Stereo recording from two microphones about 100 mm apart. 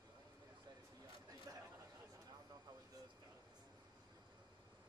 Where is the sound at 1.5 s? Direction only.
40° right (ahead or behind).